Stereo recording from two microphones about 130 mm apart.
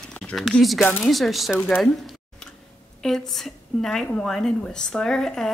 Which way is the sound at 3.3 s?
5° left (ahead or behind).